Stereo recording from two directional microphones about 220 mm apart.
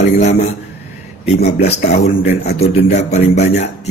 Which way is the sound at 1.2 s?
30° left (ahead or behind).